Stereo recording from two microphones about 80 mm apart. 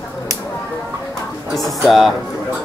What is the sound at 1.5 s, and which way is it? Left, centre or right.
Music, centre.